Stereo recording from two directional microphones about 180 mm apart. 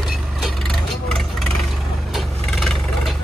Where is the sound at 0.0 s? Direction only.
Centre (ahead or behind).